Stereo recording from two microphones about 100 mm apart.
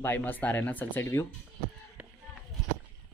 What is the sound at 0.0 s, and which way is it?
Speech, 20° left (ahead or behind).